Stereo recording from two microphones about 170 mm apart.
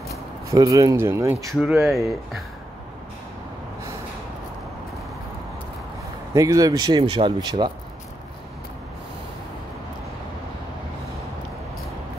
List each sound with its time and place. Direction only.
0.5 s speech: 20° right (ahead or behind)
1.5 s speech: centre (ahead or behind)
6.3 s speech: 20° right (ahead or behind)